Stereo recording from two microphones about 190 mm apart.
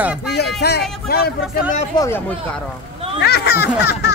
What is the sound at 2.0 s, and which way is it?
Speech, 20° left (ahead or behind).